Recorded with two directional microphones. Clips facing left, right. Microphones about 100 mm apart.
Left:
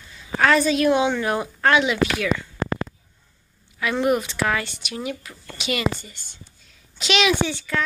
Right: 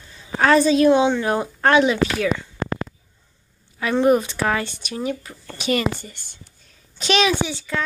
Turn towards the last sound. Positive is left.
turn(degrees=-25)  # may be behind; listen again after turning